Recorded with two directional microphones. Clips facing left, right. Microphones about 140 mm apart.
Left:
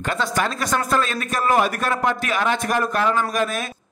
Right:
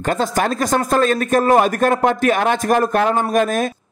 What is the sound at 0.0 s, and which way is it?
A man's voice, 45° right (ahead or behind).